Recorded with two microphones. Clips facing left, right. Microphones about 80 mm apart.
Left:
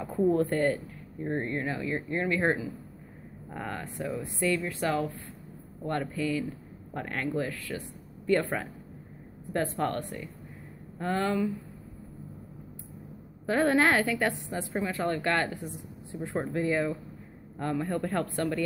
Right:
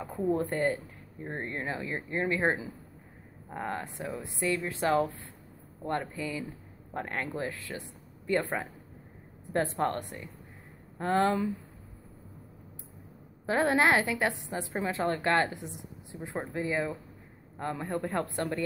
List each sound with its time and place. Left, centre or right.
0.3 s speech: centre
9.5 s speech: right
13.5 s speech: centre